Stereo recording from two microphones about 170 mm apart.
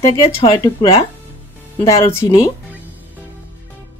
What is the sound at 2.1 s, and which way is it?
Speech, 15° left (ahead or behind).